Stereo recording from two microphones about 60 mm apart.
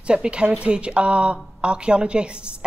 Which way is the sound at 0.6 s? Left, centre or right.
Centre.